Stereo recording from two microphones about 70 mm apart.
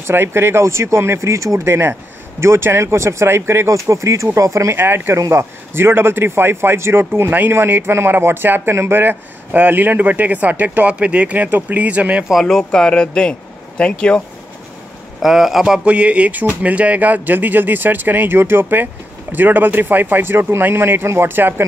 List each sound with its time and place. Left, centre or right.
0.0 s speech: right
4.7 s a man's voice: right
12.3 s speech: centre
15.2 s speech: centre
15.8 s a man's voice: centre